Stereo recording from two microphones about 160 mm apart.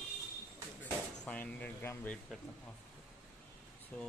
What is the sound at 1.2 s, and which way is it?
Speech, 10° left (ahead or behind).